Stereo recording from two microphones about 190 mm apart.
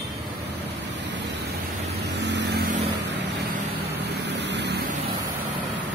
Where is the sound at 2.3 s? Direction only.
65° right (ahead or behind).